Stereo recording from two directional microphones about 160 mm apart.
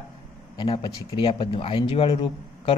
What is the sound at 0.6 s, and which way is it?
A man's voice, 30° left (ahead or behind).